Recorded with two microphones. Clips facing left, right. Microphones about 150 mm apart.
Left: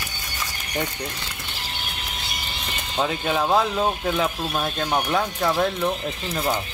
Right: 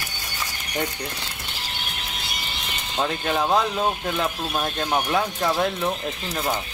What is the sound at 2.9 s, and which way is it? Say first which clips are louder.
Speech: left 1 dB; centre (ahead or behind).